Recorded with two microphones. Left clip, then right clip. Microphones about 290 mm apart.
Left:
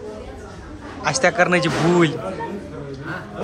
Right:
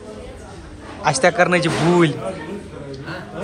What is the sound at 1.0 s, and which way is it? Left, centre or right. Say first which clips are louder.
A man's voice: right 2 dB; centre.